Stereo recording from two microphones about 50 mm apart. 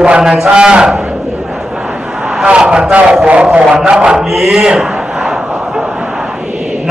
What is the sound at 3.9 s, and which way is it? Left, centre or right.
Speech, centre.